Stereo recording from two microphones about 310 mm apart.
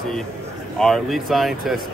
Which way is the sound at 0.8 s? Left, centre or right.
Centre.